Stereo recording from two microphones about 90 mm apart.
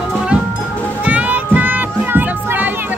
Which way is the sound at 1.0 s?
15° right (ahead or behind).